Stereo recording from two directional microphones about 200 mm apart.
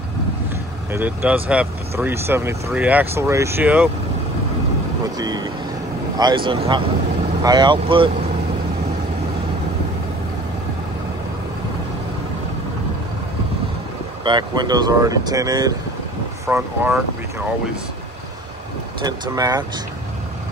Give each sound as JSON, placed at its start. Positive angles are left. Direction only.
{"t": 0.9, "sound": "speech", "side_deg": -10}
{"t": 5.0, "sound": "speech", "side_deg": -20}
{"t": 14.2, "sound": "speech", "side_deg": -20}
{"t": 16.4, "sound": "speech", "side_deg": -10}
{"t": 19.0, "sound": "speech", "side_deg": -20}